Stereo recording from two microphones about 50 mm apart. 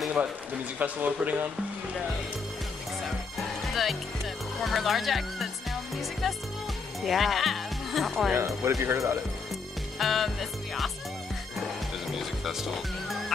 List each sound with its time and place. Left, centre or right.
0.7 s a man's voice: right
3.1 s music: centre
4.6 s speech: centre
7.0 s speech: centre
8.4 s speech: right
9.9 s music: centre
12.1 s music: centre